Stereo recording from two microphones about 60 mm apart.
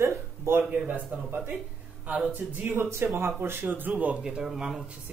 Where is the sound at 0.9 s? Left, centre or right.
Right.